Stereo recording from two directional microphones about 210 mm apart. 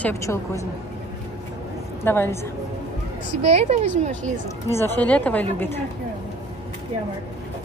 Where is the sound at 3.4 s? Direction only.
30° right (ahead or behind).